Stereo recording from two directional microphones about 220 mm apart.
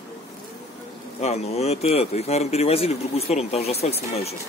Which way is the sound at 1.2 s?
30° left (ahead or behind).